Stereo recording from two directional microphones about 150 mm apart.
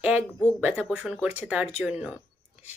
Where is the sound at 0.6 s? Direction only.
10° right (ahead or behind).